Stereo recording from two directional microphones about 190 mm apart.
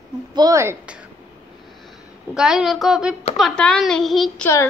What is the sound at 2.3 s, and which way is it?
A woman's voice, 5° right (ahead or behind).